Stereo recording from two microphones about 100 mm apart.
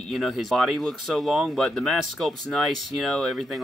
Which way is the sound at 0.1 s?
Centre (ahead or behind).